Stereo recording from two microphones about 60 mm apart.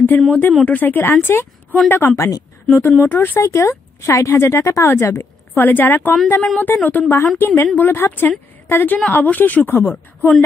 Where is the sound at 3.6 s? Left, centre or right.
Left.